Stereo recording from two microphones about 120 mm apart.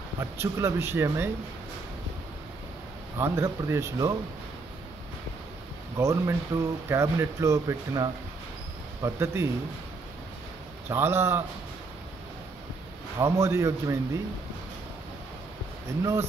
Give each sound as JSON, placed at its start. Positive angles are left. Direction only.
{"t": 0.2, "sound": "speech", "side_deg": -20}
{"t": 3.2, "sound": "speech", "side_deg": -25}
{"t": 5.9, "sound": "speech", "side_deg": -25}
{"t": 10.9, "sound": "speech", "side_deg": -20}
{"t": 13.2, "sound": "speech", "side_deg": -25}
{"t": 16.0, "sound": "speech", "side_deg": -25}